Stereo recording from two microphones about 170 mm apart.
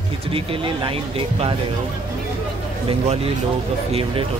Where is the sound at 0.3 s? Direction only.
35° right (ahead or behind).